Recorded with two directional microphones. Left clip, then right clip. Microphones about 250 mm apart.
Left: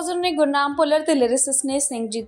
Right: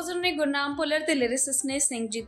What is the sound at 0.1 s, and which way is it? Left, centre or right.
A woman's voice, centre.